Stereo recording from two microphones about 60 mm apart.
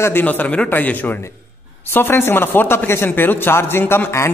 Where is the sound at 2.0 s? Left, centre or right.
Left.